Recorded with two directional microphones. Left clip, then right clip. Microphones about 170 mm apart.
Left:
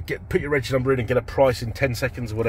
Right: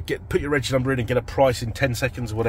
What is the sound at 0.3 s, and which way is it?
Speech, 10° left (ahead or behind).